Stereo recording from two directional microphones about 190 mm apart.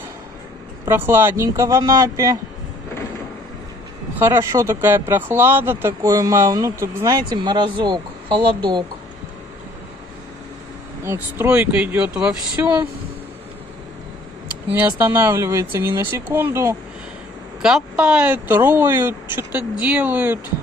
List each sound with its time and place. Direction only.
0.8 s speech: 10° right (ahead or behind)
4.2 s speech: 15° right (ahead or behind)
11.1 s speech: 10° right (ahead or behind)
14.7 s speech: 10° right (ahead or behind)
17.6 s speech: 5° right (ahead or behind)